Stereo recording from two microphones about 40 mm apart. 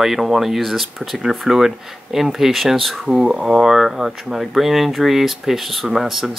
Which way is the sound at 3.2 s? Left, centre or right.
Centre.